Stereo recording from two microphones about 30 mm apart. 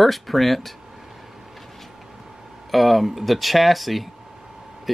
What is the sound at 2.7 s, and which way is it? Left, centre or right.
Speech, centre.